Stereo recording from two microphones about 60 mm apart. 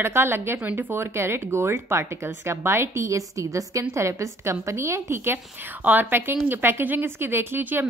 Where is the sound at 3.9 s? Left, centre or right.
Right.